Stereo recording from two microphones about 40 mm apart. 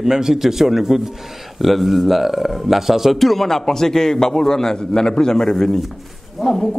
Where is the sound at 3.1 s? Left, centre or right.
Centre.